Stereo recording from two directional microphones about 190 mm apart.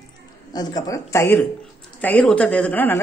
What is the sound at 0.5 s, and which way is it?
Speech, 20° left (ahead or behind).